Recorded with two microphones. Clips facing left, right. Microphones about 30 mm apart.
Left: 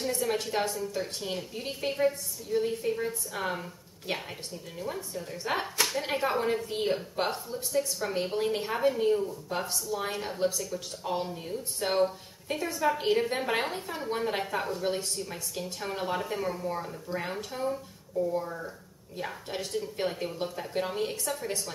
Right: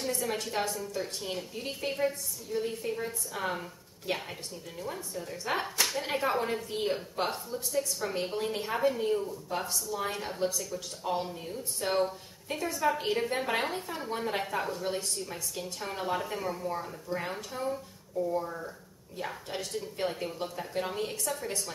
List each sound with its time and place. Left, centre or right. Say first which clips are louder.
0.0 s speech: left 3 dB; centre
4.1 s speech: even; centre